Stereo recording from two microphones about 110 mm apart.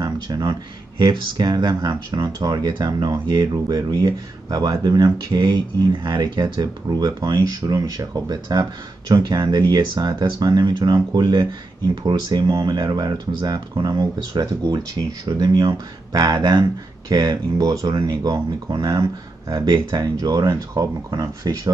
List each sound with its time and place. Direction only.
0.0 s speech: 40° right (ahead or behind)